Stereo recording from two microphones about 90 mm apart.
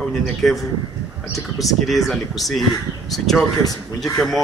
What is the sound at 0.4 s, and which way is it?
Speech, 5° left (ahead or behind).